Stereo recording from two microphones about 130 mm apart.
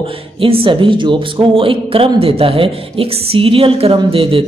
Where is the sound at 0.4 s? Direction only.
45° right (ahead or behind).